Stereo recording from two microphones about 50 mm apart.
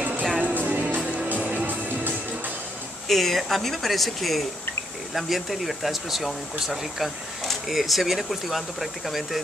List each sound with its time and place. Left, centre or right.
0.4 s music: right
3.1 s speech: centre